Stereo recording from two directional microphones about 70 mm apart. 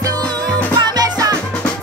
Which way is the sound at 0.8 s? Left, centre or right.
Right.